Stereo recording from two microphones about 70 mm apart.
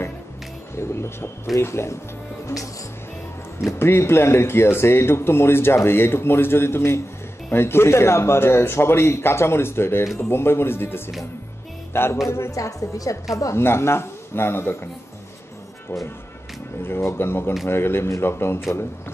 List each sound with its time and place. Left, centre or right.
0.7 s speech: left
2.4 s speech: left
3.7 s speech: left
11.9 s music: left
12.3 s a woman's voice: left
13.6 s speech: left
16.8 s speech: left